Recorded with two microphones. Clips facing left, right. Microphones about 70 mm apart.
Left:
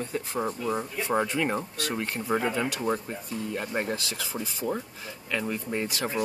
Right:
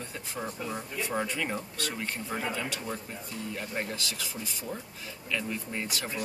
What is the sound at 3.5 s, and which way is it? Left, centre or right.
Speech, left.